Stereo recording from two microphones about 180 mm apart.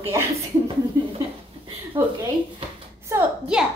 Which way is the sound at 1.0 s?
15° right (ahead or behind).